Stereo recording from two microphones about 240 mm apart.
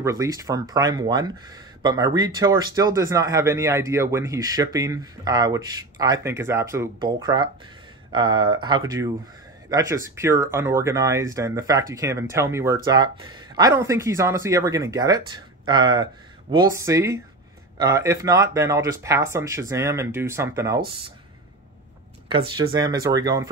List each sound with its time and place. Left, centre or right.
0.0 s speech: centre
22.6 s speech: centre